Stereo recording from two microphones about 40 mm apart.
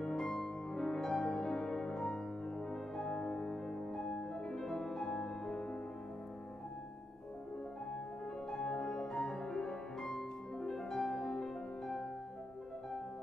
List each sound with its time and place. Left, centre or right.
0.0 s music: centre
8.5 s music: centre